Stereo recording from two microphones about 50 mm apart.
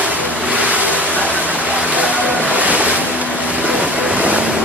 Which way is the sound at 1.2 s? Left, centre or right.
Right.